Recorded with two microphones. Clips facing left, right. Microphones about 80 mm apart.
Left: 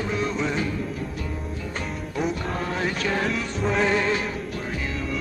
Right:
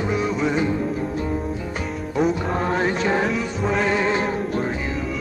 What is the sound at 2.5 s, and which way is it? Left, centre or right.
Music, right.